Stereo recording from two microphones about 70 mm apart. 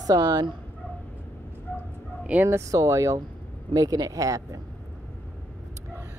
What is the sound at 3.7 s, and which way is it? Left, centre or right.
Speech, right.